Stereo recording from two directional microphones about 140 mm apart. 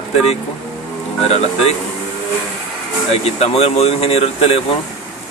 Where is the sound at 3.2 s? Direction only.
50° left (ahead or behind).